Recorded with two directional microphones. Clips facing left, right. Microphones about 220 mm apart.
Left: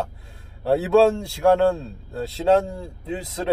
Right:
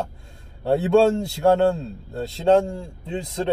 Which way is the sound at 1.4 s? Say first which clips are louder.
Even; 20° right (ahead or behind).